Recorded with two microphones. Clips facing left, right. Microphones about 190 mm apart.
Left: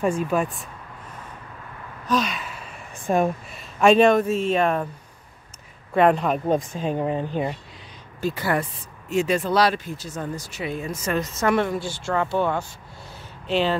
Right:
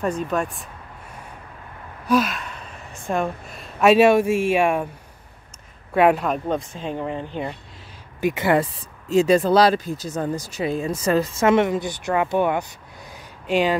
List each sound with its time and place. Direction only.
0.3 s speech: 5° left (ahead or behind)
2.0 s gasp: 5° right (ahead or behind)
2.9 s a sound: 15° left (ahead or behind)
3.5 s speech: 5° right (ahead or behind)
5.9 s speech: 5° right (ahead or behind)
6.5 s speech: 10° left (ahead or behind)
8.2 s speech: 20° right (ahead or behind)